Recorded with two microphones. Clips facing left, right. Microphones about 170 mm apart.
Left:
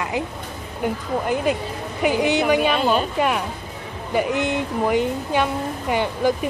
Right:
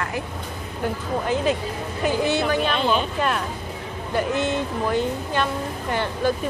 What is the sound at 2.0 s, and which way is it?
Speech, 15° left (ahead or behind).